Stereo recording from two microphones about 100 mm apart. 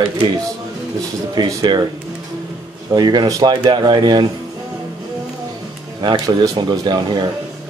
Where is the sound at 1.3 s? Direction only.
45° right (ahead or behind).